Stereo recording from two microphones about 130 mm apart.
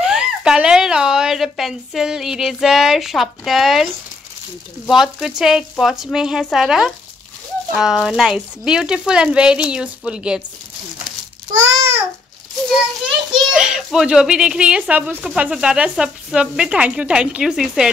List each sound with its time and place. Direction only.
0.0 s a child's voice: 5° right (ahead or behind)
11.5 s babbling: 25° right (ahead or behind)
13.0 s a child's voice: 5° right (ahead or behind)